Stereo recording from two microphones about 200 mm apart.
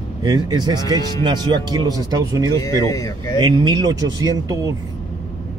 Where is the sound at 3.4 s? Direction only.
20° right (ahead or behind).